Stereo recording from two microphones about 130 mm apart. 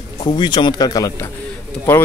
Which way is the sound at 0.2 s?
40° left (ahead or behind).